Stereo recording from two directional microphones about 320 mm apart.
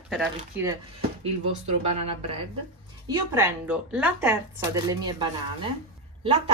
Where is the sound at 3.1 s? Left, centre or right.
Centre.